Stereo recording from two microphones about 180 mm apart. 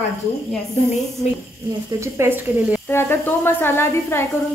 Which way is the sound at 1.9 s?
15° right (ahead or behind).